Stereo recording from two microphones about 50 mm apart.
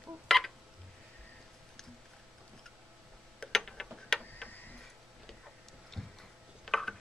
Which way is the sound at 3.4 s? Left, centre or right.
Centre.